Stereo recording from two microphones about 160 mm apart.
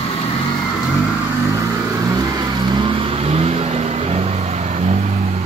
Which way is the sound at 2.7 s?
35° right (ahead or behind).